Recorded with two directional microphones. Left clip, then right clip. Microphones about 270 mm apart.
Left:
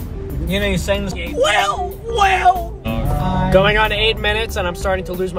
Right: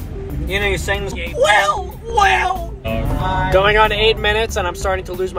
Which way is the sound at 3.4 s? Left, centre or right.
Centre.